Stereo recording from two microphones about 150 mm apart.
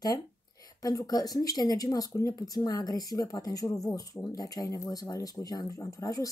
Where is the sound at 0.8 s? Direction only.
25° left (ahead or behind).